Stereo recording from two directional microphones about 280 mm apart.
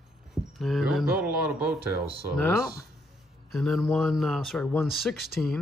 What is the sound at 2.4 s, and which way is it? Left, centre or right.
Speech, centre.